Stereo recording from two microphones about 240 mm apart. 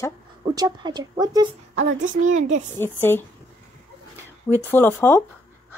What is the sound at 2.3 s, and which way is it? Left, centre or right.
Speech, right.